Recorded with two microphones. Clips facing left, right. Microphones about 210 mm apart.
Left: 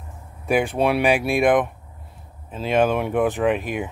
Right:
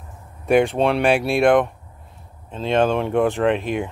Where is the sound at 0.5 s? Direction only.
Centre (ahead or behind).